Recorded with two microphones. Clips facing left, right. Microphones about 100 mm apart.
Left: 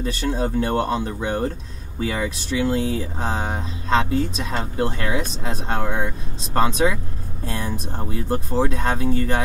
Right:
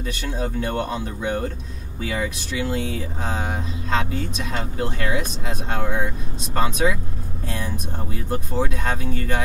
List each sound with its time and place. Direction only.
0.0 s speech: 30° left (ahead or behind)